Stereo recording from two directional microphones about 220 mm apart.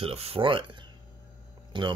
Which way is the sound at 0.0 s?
25° right (ahead or behind).